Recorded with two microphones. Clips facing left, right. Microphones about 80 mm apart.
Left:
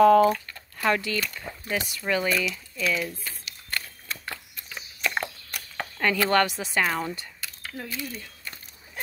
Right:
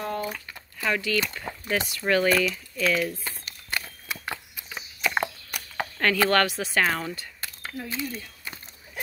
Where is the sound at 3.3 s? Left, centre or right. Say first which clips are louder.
Right 2 dB; right.